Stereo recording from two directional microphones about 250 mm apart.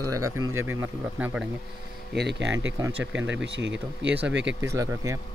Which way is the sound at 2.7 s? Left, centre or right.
Centre.